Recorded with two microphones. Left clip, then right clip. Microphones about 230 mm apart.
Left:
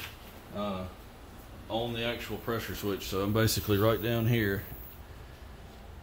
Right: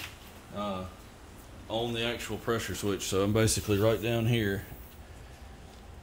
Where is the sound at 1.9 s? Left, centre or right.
Right.